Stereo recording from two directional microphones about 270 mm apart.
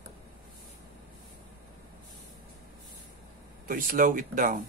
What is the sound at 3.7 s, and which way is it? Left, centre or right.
Speech, right.